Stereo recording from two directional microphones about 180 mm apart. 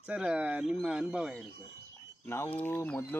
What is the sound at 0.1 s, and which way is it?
Speech, 5° right (ahead or behind).